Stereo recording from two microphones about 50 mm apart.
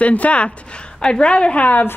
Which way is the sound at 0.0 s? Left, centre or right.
Left.